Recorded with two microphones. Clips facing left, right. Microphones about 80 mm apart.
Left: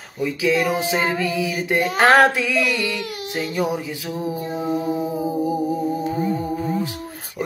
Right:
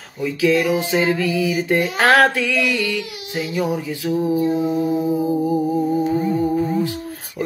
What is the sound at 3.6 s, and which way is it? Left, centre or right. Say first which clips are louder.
Speech: right 3 dB; centre.